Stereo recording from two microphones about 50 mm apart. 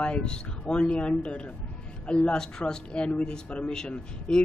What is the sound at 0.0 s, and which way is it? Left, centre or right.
Speech, centre.